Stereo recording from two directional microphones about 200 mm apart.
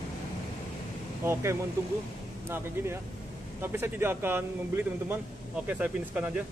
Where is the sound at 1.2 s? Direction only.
15° right (ahead or behind).